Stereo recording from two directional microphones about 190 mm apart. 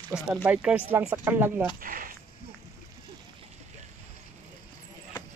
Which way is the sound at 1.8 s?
50° right (ahead or behind).